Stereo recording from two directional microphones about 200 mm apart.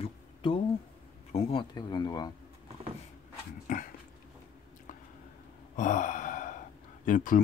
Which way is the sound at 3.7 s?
35° left (ahead or behind).